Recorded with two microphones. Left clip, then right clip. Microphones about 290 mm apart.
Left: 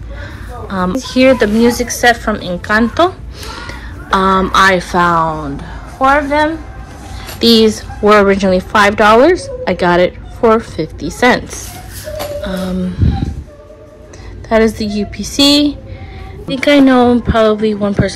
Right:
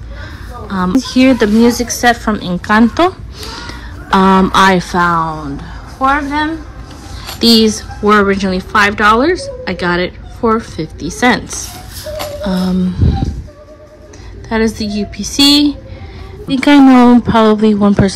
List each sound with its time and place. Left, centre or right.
0.2 s a sound: centre
1.0 s a woman's voice: centre
14.5 s a woman's voice: centre